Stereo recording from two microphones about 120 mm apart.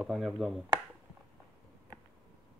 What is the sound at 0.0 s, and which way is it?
Speech, 10° right (ahead or behind).